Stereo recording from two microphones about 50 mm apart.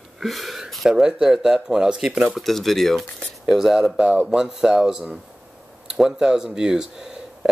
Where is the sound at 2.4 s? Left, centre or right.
Centre.